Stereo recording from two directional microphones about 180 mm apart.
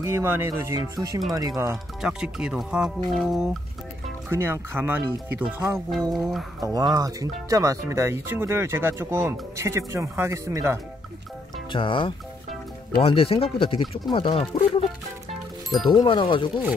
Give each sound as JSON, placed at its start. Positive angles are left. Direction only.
{"t": 0.0, "sound": "speech", "side_deg": -15}
{"t": 2.0, "sound": "speech", "side_deg": -5}
{"t": 4.3, "sound": "speech", "side_deg": -15}
{"t": 6.6, "sound": "speech", "side_deg": -20}
{"t": 11.7, "sound": "speech", "side_deg": 30}
{"t": 15.9, "sound": "speech", "side_deg": 25}